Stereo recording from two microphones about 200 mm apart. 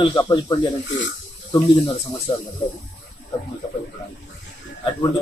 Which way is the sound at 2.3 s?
25° left (ahead or behind).